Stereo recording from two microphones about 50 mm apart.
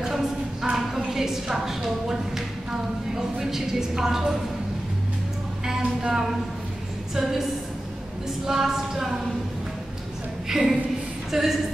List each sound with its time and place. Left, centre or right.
0.0 s a sound: centre
3.2 s a woman's voice: centre
5.8 s a sound: centre
7.2 s a woman's voice: centre
8.5 s a woman's voice: centre
10.5 s a woman's voice: centre